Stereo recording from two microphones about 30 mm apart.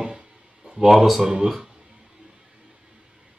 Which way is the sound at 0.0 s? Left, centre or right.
Right.